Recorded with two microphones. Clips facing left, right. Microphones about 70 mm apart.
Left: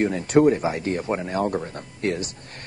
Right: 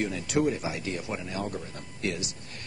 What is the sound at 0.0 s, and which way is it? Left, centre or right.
Speech, left.